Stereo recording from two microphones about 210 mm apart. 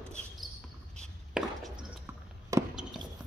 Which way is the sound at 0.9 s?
Centre (ahead or behind).